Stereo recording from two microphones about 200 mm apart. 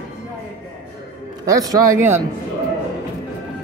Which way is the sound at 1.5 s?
20° right (ahead or behind).